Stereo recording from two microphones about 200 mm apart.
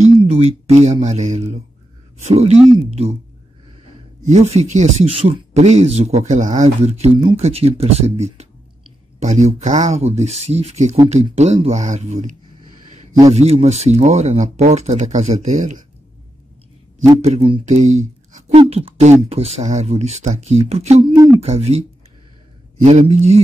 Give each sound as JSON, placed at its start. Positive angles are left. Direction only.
{"t": 0.0, "sound": "speech", "side_deg": -30}
{"t": 4.3, "sound": "speech", "side_deg": -35}
{"t": 17.2, "sound": "speech", "side_deg": -30}
{"t": 22.8, "sound": "speech", "side_deg": -30}